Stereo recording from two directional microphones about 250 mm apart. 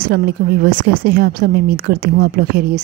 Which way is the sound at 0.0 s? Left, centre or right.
Right.